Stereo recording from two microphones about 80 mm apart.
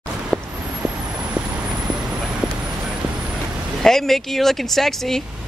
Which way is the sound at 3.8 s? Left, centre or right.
Centre.